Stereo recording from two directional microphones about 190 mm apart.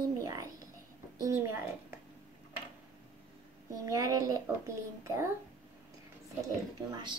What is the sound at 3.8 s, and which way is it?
A child's voice, 20° right (ahead or behind).